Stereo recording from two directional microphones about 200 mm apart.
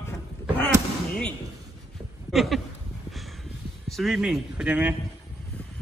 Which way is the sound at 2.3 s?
Centre (ahead or behind).